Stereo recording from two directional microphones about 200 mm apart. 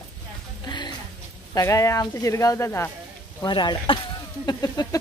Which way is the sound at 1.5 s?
15° left (ahead or behind).